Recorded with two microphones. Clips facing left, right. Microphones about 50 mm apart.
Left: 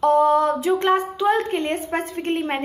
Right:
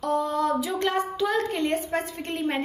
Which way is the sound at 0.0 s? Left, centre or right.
Left.